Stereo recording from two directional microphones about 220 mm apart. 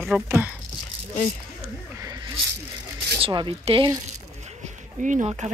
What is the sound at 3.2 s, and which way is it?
Speech, 20° right (ahead or behind).